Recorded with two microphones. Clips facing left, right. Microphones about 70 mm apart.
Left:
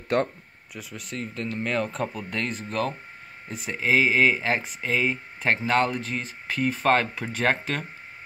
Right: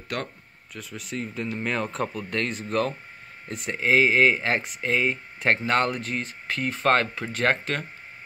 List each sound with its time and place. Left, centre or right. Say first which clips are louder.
0.1 s speech: left 8 dB; left
0.7 s speech: right 1 dB; centre